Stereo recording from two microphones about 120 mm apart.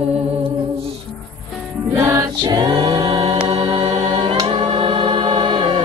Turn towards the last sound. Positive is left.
turn(degrees=-45)  # may be behind; listen again after turning